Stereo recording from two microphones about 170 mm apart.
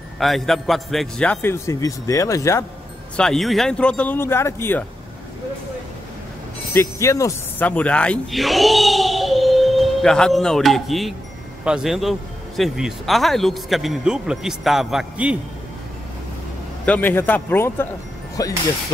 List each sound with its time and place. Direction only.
0.2 s a man's voice: centre (ahead or behind); by 2.6 s 20° left (ahead or behind)
3.2 s a man's voice: centre (ahead or behind)
6.7 s speech: 15° left (ahead or behind); by 15.3 s 5° right (ahead or behind)
16.8 s a man's voice: 10° left (ahead or behind)